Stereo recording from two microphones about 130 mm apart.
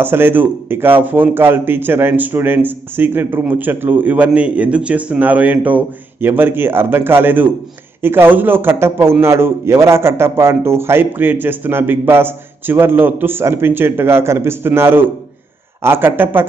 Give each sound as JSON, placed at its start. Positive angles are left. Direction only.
{"t": 0.0, "sound": "a man's voice", "side_deg": -15}